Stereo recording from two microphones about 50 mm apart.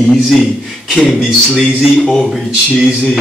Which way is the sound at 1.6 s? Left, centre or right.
Centre.